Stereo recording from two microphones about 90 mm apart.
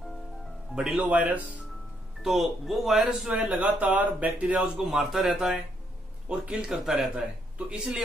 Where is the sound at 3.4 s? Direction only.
15° right (ahead or behind).